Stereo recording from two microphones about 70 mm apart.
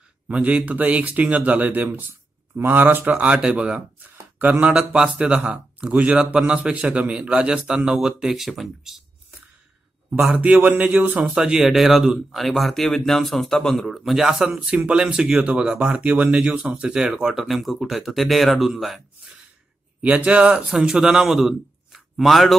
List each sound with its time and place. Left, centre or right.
0.3 s speech: right; by 9.0 s centre
10.3 s speech: right
11.3 s speech: centre
20.0 s a man's voice: centre